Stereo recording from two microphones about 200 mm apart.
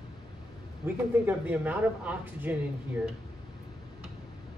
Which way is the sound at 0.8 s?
10° right (ahead or behind).